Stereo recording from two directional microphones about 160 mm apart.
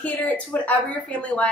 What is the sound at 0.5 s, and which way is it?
Speech, 10° left (ahead or behind).